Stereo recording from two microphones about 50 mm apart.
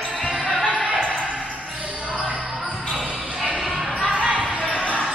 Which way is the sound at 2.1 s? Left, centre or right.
Centre.